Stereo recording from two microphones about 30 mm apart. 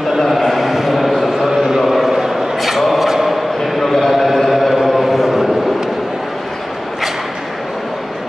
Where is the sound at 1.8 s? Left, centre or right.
Centre.